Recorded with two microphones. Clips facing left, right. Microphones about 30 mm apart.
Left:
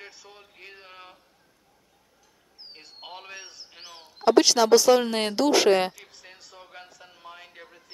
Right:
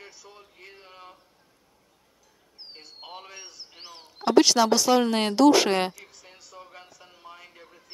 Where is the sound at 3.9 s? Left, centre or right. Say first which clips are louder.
Left 5 dB; centre.